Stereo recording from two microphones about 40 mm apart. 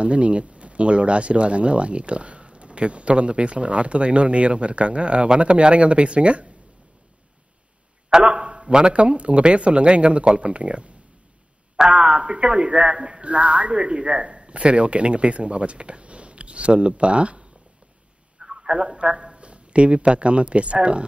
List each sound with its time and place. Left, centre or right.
0.0 s speech: right
8.2 s a sound: right
8.7 s speech: right
11.9 s speech: right
18.4 s speech: centre